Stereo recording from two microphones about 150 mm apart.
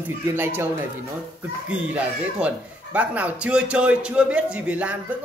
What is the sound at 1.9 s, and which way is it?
Speech, 10° right (ahead or behind).